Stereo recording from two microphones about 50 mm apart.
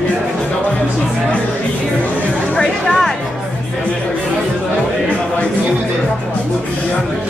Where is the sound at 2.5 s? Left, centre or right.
Centre.